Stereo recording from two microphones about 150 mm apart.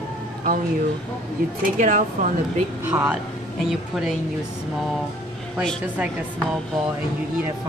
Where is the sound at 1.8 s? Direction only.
55° right (ahead or behind).